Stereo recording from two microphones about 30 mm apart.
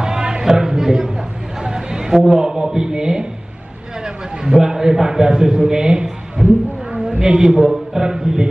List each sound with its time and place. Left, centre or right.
0.0 s music: right
1.6 s a sound: right
2.1 s a man's voice: centre
4.5 s a man's voice: right